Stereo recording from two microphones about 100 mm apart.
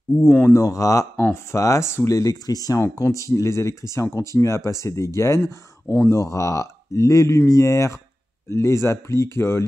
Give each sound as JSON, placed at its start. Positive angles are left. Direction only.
{"t": 0.3, "sound": "speech", "side_deg": 20}
{"t": 0.6, "sound": "speech", "side_deg": 35}